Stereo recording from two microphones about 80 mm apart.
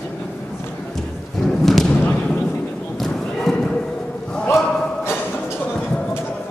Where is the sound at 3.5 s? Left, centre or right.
Centre.